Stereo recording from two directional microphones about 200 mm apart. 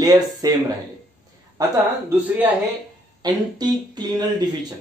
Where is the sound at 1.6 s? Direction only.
10° right (ahead or behind).